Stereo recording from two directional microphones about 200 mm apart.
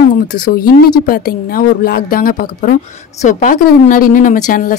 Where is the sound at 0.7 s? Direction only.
45° left (ahead or behind).